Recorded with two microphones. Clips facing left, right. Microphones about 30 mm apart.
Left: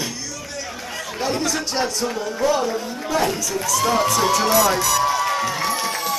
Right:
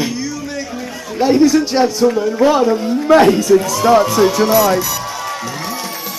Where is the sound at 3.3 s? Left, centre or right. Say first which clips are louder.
Right 14 dB; right.